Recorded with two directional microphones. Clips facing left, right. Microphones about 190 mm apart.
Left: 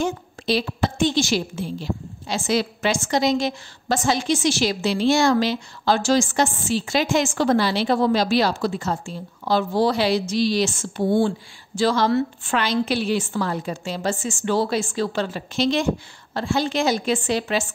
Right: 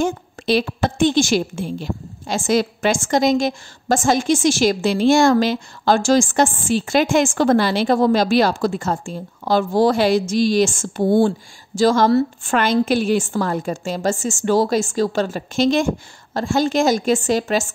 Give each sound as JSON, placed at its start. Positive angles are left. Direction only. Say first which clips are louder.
{"t": 0.0, "sound": "a woman's voice", "louder": "right 3 dB", "side_deg": -55}